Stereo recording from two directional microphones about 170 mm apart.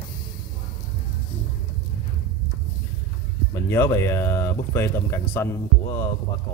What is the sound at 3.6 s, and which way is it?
Speech, 15° left (ahead or behind).